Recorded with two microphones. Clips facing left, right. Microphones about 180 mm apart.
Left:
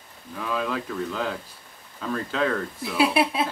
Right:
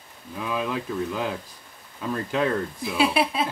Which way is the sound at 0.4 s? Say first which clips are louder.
Even; 15° right (ahead or behind).